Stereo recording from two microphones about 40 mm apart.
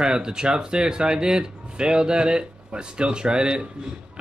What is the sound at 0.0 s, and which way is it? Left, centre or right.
Speech, centre.